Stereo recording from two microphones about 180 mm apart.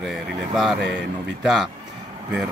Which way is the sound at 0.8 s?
70° right (ahead or behind).